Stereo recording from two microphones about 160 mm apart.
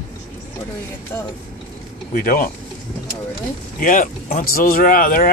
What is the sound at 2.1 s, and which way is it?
Speech, 65° left (ahead or behind).